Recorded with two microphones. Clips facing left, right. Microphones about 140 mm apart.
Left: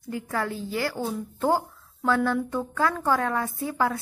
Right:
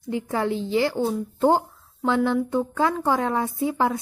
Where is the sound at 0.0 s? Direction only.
25° right (ahead or behind).